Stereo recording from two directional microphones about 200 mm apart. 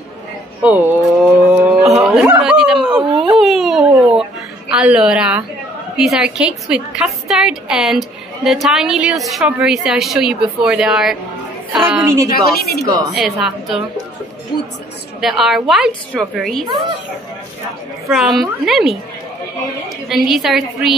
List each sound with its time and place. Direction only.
0.6 s a sound: 10° right (ahead or behind)
5.9 s a woman's voice: centre (ahead or behind)
12.0 s a woman's voice: 15° right (ahead or behind)
12.4 s speech: 50° left (ahead or behind)
12.8 s a woman's voice: 20° right (ahead or behind)
13.1 s a woman's voice: centre (ahead or behind)
15.1 s a woman's voice: centre (ahead or behind)
18.1 s a woman's voice: centre (ahead or behind)
20.1 s a woman's voice: centre (ahead or behind)